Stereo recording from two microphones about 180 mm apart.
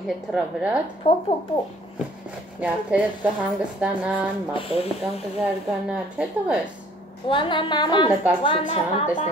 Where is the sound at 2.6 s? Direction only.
5° right (ahead or behind).